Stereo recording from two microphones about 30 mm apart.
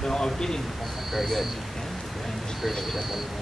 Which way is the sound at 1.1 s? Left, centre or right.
Centre.